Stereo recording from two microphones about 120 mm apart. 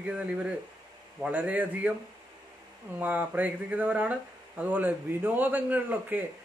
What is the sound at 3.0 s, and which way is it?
Speech, 15° right (ahead or behind).